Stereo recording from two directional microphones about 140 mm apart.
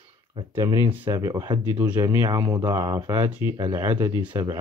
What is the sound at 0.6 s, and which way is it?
Speech, 20° right (ahead or behind).